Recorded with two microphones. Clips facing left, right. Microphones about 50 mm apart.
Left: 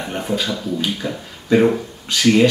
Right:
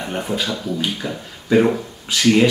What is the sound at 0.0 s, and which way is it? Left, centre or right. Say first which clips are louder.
Speech: left 1 dB; centre.